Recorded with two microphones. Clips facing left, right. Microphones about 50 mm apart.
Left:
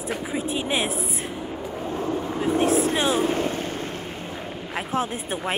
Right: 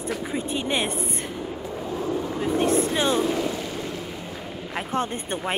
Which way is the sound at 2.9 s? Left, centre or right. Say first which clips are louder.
Even; left.